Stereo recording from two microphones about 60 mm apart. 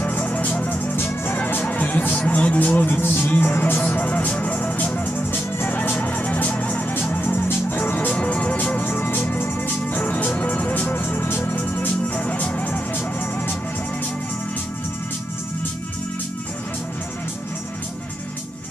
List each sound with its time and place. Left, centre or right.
0.0 s music: left